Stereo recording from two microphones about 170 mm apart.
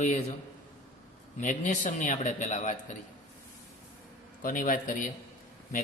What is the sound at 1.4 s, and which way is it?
A man's voice, 45° left (ahead or behind).